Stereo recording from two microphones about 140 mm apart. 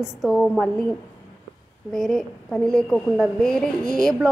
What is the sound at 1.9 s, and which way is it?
A woman's voice, centre (ahead or behind).